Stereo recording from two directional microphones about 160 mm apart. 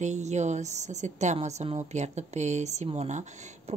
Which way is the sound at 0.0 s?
45° right (ahead or behind).